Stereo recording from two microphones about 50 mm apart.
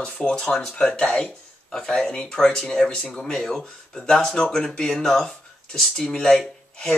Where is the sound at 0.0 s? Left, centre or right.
Centre.